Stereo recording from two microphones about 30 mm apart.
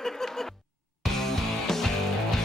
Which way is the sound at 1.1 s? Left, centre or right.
Centre.